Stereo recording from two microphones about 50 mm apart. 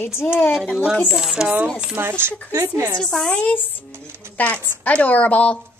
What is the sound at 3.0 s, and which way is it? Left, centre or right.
Speech, centre.